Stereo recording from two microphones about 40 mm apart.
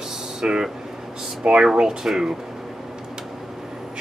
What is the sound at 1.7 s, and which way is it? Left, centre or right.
Speech, centre.